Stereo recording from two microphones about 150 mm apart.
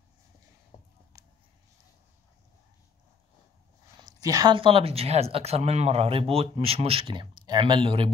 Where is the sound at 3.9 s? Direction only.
25° right (ahead or behind).